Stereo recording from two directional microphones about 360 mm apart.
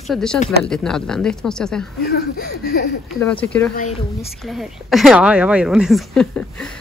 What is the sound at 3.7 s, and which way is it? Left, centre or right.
Speech, left.